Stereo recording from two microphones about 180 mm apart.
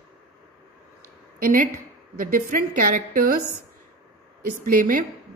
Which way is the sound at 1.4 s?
50° right (ahead or behind).